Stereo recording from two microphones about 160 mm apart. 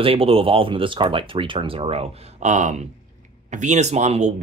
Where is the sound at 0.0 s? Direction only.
35° right (ahead or behind).